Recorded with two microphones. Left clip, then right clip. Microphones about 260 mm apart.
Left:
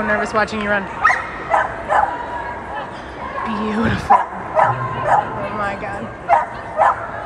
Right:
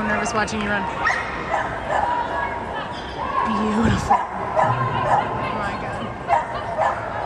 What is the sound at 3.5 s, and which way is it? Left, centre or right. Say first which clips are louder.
Speech: left 1 dB; centre.